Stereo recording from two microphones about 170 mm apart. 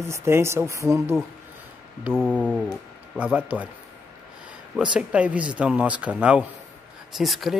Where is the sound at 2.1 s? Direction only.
5° left (ahead or behind).